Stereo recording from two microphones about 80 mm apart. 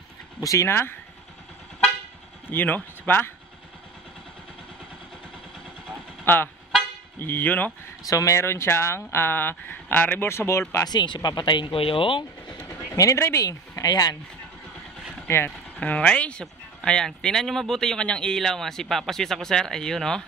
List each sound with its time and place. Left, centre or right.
0.4 s speech: left
0.7 s speech: left
2.5 s speech: left
6.2 s speech: left
8.1 s speech: left
10.9 s speech: left
12.6 s a sound: left
13.5 s speech: left
15.2 s speech: left
15.8 s speech: centre